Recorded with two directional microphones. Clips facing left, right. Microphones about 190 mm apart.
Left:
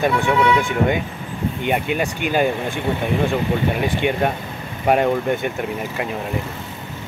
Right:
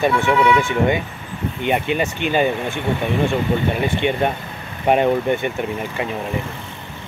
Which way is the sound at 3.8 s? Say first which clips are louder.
Even; 5° left (ahead or behind).